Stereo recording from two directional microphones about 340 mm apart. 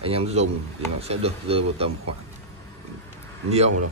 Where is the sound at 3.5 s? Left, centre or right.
Centre.